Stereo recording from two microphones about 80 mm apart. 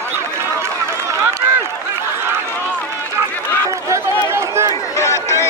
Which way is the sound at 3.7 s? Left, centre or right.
Right.